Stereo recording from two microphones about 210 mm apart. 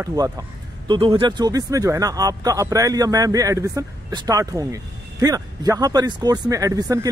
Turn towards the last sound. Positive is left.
turn(degrees=-15)  # may be behind; listen again after turning